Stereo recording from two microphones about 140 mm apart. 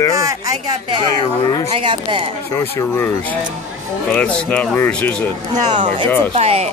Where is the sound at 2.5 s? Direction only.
20° left (ahead or behind).